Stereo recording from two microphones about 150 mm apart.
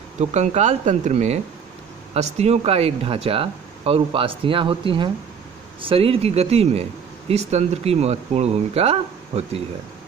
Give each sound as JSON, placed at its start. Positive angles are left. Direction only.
{"t": 0.2, "sound": "speech", "side_deg": -50}